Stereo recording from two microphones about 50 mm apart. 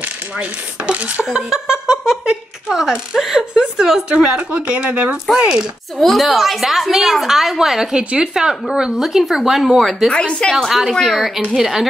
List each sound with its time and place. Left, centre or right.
0.0 s dishes: right
1.2 s a woman's voice: centre
4.1 s speech: right
5.9 s a woman's voice: centre
8.0 s speech: right
8.4 s speech: centre
10.0 s a woman's voice: centre
10.7 s a woman's voice: centre